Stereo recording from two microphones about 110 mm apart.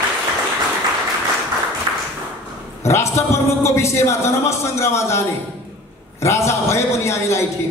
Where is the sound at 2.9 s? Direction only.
25° left (ahead or behind).